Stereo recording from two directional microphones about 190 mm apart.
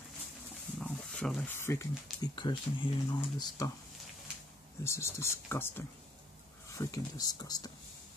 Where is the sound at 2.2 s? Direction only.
25° left (ahead or behind).